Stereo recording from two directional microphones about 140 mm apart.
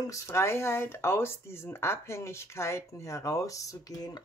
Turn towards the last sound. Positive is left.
turn(degrees=30)  # may be behind; listen again after turning